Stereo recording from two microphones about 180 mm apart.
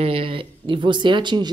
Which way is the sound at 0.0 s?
30° right (ahead or behind).